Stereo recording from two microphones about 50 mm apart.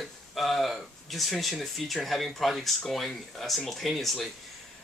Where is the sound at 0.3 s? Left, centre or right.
Centre.